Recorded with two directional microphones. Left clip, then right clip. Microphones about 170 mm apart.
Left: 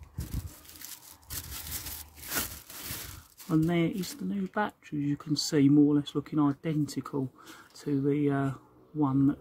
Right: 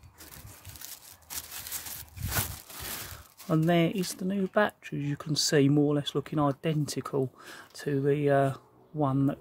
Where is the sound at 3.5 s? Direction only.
55° right (ahead or behind).